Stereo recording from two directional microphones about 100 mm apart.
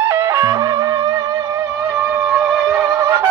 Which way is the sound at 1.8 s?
20° right (ahead or behind).